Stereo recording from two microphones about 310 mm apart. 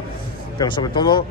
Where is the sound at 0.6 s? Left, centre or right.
Centre.